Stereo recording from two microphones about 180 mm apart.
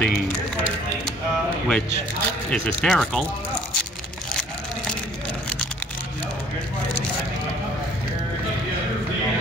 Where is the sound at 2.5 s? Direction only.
5° left (ahead or behind).